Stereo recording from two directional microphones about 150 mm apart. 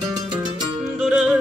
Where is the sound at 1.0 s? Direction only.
5° right (ahead or behind).